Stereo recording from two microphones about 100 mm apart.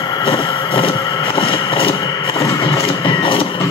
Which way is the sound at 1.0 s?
55° left (ahead or behind).